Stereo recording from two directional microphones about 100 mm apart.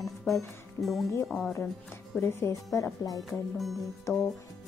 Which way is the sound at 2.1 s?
25° left (ahead or behind).